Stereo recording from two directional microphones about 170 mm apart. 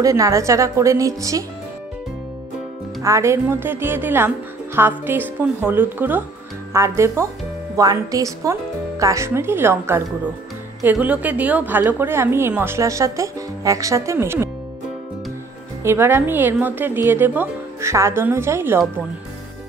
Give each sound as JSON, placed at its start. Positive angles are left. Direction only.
{"t": 0.0, "sound": "a woman's voice", "side_deg": -20}
{"t": 3.0, "sound": "a woman's voice", "side_deg": -15}
{"t": 15.8, "sound": "a woman's voice", "side_deg": -15}